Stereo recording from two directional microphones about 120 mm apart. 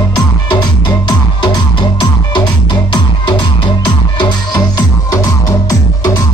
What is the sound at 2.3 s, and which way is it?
Music, 40° left (ahead or behind).